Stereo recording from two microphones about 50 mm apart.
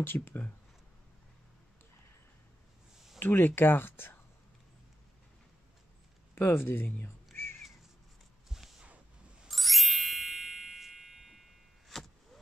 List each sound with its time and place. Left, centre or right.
0.0 s speech: left
3.2 s speech: left
6.3 s speech: left
7.3 s crow: left
8.5 s a sound: centre
9.5 s music: centre